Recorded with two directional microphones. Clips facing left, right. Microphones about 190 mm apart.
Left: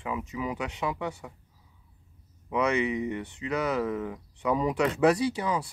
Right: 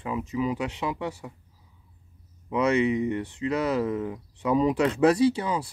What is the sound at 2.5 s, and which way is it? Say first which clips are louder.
Speech: right 4 dB; 30° right (ahead or behind).